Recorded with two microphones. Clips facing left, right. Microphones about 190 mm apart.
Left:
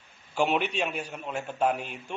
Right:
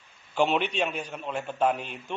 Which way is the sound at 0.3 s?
10° left (ahead or behind).